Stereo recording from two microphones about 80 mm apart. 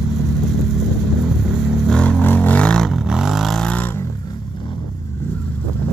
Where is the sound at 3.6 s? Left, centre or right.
Centre.